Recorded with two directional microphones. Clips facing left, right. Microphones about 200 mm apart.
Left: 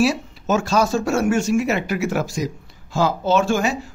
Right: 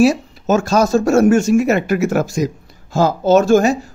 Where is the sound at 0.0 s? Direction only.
45° right (ahead or behind).